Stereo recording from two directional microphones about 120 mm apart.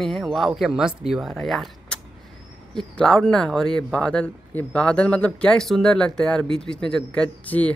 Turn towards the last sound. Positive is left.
turn(degrees=10)  # may be behind; listen again after turning